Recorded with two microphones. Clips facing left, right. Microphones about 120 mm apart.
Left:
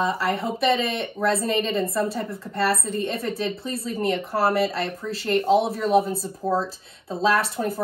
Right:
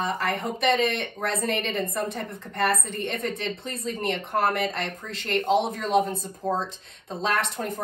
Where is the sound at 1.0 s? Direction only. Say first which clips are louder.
Left 5 dB; 30° left (ahead or behind).